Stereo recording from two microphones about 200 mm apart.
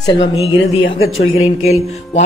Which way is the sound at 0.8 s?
80° left.